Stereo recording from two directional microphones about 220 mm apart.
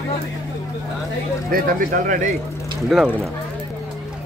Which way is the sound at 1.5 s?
40° right (ahead or behind).